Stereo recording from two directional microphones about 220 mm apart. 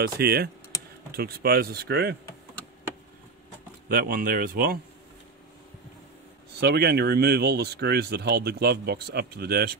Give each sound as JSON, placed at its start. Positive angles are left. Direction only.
{"t": 0.0, "sound": "speech", "side_deg": -45}
{"t": 3.9, "sound": "speech", "side_deg": -40}
{"t": 6.6, "sound": "speech", "side_deg": -50}